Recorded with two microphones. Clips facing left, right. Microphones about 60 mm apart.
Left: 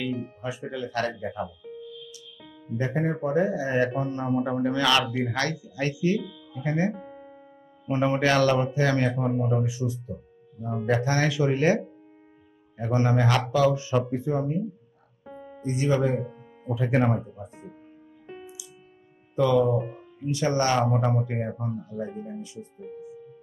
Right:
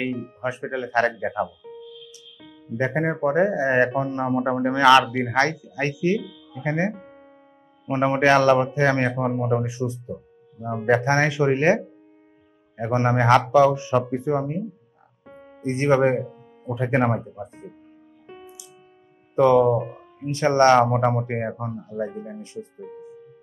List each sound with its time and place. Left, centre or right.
0.0 s a man's voice: right
2.8 s a man's voice: right
15.6 s speech: right
16.7 s a man's voice: right
19.3 s speech: right
19.8 s speech: centre
20.2 s speech: right